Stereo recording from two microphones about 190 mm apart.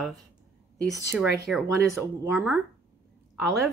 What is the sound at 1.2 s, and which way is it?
Speech, 5° right (ahead or behind).